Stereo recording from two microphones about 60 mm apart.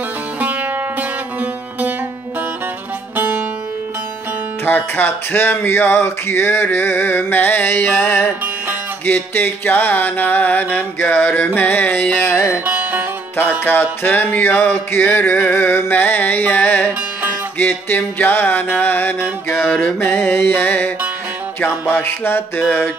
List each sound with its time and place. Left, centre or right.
0.4 s music: right
4.6 s music: left
11.0 s music: left
12.6 s music: right
14.0 s music: left